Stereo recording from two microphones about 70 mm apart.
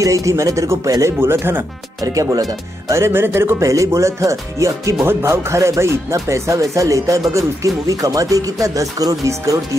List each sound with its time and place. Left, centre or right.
0.0 s speech: right
1.2 s speech: right
2.9 s speech: right
3.6 s speech: right
5.0 s speech: right